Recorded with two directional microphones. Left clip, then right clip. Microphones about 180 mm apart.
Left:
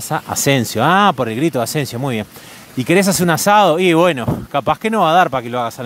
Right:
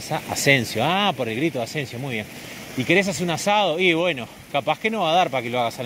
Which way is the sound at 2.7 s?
50° left (ahead or behind).